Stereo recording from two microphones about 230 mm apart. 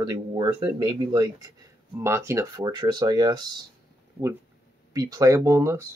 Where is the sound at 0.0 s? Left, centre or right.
Centre.